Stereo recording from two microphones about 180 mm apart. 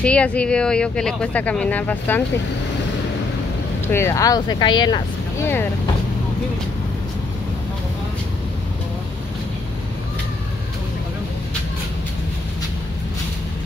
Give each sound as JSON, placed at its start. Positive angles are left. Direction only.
{"t": 0.0, "sound": "speech", "side_deg": 5}
{"t": 3.8, "sound": "speech", "side_deg": 15}